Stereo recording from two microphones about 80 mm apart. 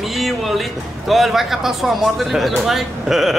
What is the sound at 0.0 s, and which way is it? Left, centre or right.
A man's voice, centre.